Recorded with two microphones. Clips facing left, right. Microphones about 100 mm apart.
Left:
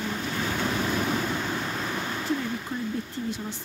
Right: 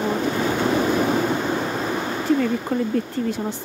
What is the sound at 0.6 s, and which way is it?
Vehicle, 30° right (ahead or behind).